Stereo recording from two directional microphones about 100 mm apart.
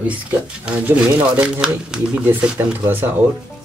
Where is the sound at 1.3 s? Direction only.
10° right (ahead or behind).